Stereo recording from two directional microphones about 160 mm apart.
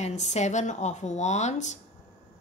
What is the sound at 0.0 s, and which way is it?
A woman's voice, 45° left (ahead or behind).